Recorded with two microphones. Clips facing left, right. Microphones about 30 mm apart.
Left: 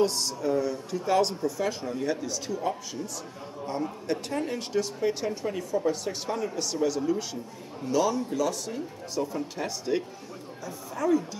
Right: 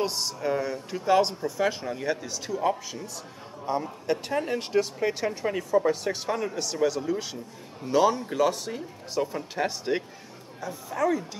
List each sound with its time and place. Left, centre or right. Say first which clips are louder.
0.0 s speech: left 2 dB; centre; by 6.2 s right
6.5 s speech: right 1 dB; centre
7.9 s speech: right 3 dB; right
10.7 s speech: even; centre